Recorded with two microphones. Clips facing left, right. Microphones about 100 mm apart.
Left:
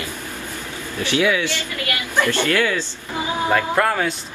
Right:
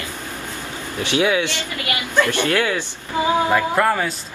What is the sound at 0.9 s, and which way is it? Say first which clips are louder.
Speech: right 1 dB; 20° right (ahead or behind).